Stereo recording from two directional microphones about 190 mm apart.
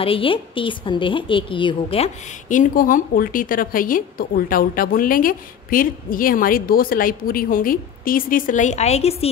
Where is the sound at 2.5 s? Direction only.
45° left (ahead or behind).